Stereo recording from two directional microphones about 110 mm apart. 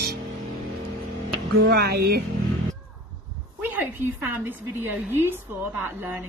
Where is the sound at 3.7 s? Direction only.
20° right (ahead or behind).